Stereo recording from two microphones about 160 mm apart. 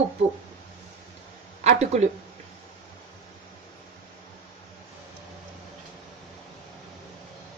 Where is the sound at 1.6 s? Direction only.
45° right (ahead or behind).